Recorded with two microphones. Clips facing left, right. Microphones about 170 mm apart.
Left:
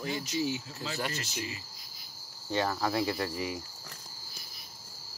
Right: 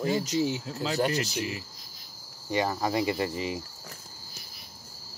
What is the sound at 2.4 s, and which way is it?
Cricket, 15° right (ahead or behind).